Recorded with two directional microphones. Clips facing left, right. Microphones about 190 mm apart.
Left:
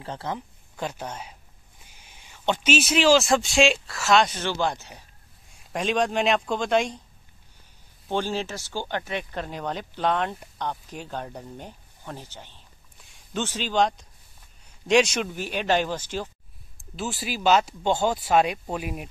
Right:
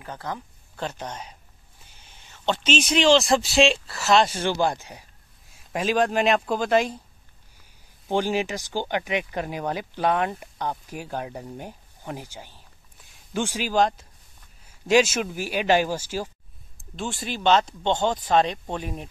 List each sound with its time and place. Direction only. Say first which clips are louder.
0.0 s speech: left 1 dB; 25° left (ahead or behind)
0.7 s speech: even; 10° left (ahead or behind)
4.3 s speech: right 3 dB; 10° right (ahead or behind)
8.1 s speech: right 3 dB; 15° right (ahead or behind)
16.7 s speech: even; 5° left (ahead or behind)